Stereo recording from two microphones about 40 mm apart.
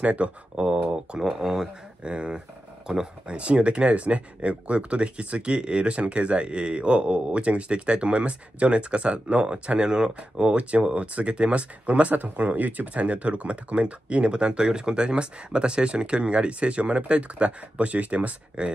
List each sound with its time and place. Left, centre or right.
0.0 s speech: right; by 1.7 s centre
2.0 s speech: right
3.3 s speech: right